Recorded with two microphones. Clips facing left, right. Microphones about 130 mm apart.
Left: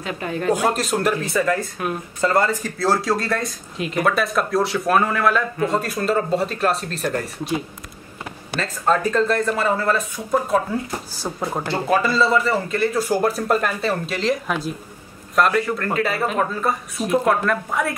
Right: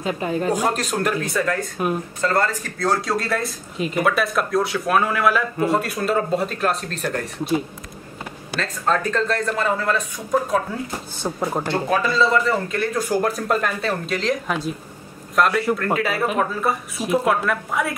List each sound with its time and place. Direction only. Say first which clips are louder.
0.0 s speech: right 3 dB; 30° right (ahead or behind)
0.4 s speech: left 4 dB; centre (ahead or behind)
8.5 s a man's voice: left 2 dB; 5° left (ahead or behind)